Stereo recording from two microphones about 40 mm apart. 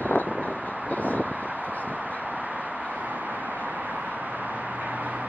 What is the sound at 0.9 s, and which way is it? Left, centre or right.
Vehicle, left.